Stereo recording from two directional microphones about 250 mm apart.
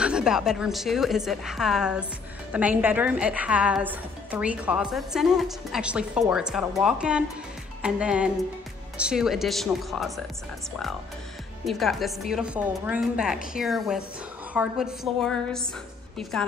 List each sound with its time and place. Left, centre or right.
0.0 s a woman's voice: centre
11.6 s a woman's voice: centre